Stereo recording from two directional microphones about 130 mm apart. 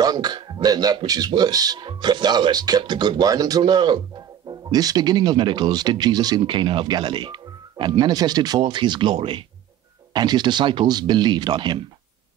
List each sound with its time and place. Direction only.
0.0 s speech: 30° right (ahead or behind)